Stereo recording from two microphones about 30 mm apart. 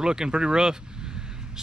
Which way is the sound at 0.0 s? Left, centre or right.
Right.